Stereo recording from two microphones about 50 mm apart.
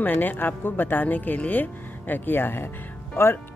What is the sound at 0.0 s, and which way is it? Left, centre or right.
Speech, left.